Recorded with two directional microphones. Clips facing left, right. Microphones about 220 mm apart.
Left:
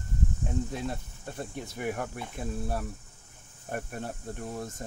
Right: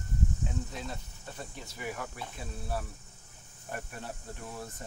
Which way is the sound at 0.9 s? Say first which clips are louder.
Left 5 dB; 55° left (ahead or behind).